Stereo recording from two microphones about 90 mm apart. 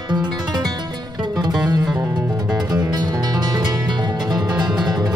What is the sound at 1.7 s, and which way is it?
Music, 50° right (ahead or behind).